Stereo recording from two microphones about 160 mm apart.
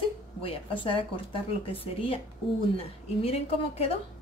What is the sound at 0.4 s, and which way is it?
Speech, 35° left (ahead or behind).